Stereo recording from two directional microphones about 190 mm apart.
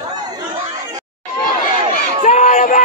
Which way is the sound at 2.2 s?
40° left (ahead or behind).